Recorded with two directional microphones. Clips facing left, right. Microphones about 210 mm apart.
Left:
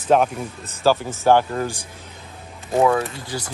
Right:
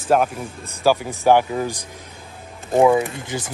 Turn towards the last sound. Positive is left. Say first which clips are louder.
# right 2 dB
turn(degrees=-20)  # may be behind; listen again after turning